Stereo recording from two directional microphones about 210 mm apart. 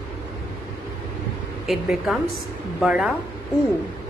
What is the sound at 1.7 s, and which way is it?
A woman's voice, centre (ahead or behind).